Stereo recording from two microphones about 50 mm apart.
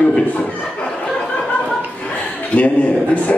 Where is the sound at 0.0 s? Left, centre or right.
Left.